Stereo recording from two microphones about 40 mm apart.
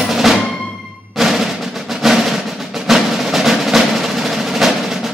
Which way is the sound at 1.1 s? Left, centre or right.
Centre.